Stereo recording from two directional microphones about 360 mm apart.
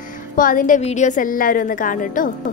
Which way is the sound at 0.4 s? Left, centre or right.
Left.